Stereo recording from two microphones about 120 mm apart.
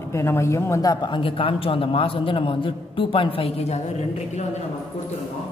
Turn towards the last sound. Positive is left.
turn(degrees=60)  # may be behind; listen again after turning